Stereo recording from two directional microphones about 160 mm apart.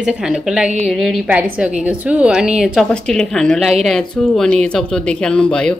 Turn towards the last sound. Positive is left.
turn(degrees=5)  # may be behind; listen again after turning